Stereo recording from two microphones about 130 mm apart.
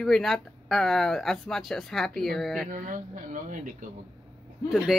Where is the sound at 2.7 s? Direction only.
85° right.